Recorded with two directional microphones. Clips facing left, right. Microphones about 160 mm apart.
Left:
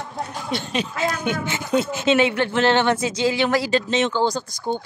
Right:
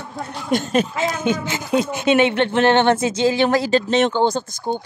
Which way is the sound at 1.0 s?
25° right (ahead or behind).